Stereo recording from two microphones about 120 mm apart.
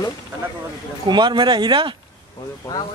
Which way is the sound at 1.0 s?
40° right (ahead or behind).